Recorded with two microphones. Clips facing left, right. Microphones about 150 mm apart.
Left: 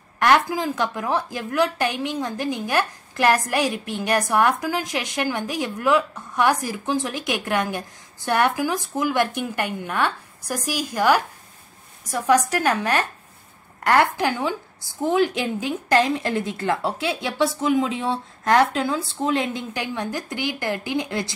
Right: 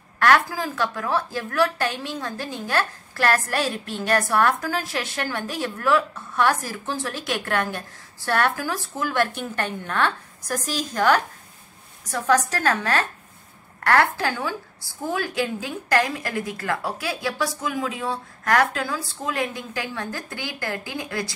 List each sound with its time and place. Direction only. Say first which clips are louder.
0.2 s a woman's voice: left 1 dB; 20° left (ahead or behind)